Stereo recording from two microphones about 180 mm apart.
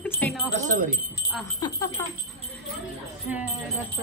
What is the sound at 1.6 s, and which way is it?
Speech, 25° left (ahead or behind).